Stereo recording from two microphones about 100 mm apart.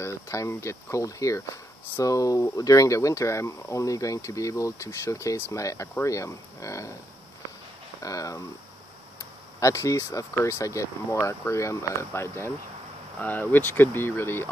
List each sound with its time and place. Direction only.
0.0 s speech: 30° left (ahead or behind)
8.0 s speech: 35° left (ahead or behind)
9.6 s speech: 30° left (ahead or behind)